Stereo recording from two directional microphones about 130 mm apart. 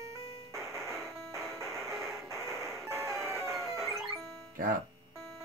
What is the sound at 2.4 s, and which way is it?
Music, 20° right (ahead or behind).